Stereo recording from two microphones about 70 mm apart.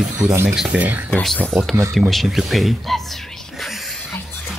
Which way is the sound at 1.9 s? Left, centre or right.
Centre.